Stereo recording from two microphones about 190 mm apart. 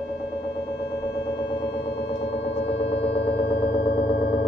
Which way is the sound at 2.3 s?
65° left (ahead or behind).